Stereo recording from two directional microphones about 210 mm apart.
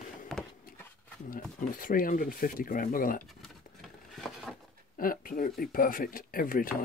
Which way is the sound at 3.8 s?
Centre (ahead or behind).